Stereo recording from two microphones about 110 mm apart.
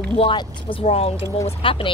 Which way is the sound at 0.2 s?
50° left (ahead or behind).